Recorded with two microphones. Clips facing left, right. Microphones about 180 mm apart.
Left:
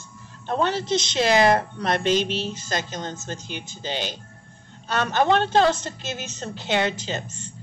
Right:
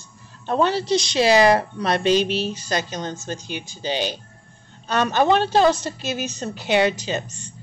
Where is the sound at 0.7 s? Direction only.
20° left (ahead or behind).